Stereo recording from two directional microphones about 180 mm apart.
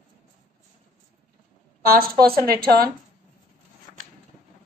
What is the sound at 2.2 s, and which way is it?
Speech, 55° right (ahead or behind).